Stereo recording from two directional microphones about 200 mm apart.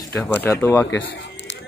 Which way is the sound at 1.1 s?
60° left (ahead or behind).